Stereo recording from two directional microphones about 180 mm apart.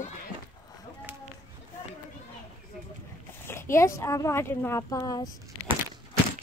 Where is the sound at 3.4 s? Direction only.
15° left (ahead or behind).